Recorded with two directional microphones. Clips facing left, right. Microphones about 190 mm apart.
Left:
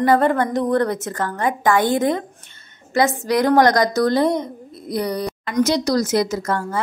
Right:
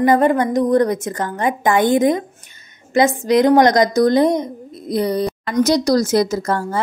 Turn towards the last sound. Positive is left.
turn(degrees=-30)  # may be behind; listen again after turning